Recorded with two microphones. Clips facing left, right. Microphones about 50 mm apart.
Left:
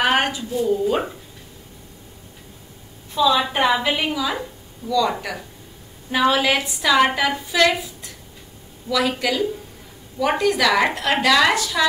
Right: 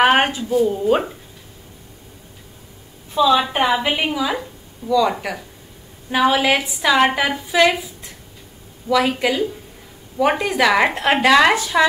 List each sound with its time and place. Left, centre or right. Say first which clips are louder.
0.0 s a woman's voice: right 4 dB; right
3.2 s a woman's voice: right 2 dB; centre